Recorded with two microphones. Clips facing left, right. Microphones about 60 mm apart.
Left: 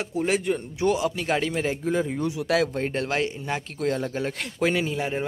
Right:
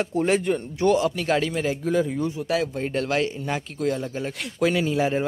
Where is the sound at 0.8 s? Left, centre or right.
Centre.